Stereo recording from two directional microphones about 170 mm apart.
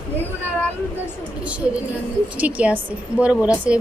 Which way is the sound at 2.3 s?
10° right (ahead or behind).